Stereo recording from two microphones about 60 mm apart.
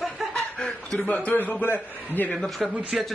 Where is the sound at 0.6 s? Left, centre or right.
Centre.